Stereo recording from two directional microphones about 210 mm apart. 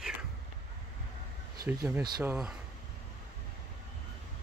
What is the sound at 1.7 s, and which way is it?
Speech, 5° right (ahead or behind).